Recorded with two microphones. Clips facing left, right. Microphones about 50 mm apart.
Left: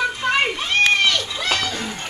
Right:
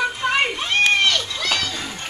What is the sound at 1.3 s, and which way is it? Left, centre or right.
Children playing, left.